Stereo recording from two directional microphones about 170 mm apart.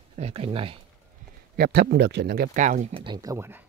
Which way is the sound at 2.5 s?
45° right (ahead or behind).